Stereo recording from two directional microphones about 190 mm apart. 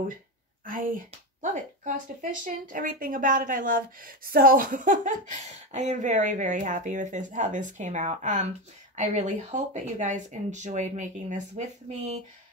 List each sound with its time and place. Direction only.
0.7 s speech: 45° right (ahead or behind)